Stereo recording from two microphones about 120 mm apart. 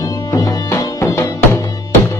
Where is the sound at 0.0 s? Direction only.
30° left (ahead or behind).